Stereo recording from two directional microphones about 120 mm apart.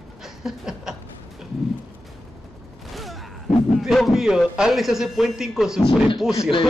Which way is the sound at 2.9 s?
Centre (ahead or behind).